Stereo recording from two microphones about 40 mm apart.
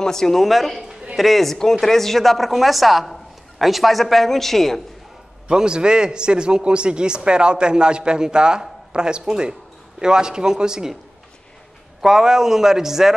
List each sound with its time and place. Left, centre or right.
0.0 s speech: centre
5.5 s a man's voice: right
12.0 s a man's voice: centre